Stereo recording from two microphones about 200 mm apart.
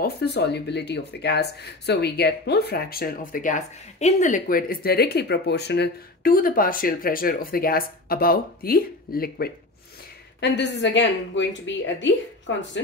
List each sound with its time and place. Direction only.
0.0 s speech: 55° left (ahead or behind)
10.4 s a woman's voice: 60° left (ahead or behind)